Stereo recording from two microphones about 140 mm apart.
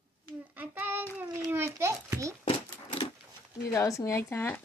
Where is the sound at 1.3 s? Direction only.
20° right (ahead or behind).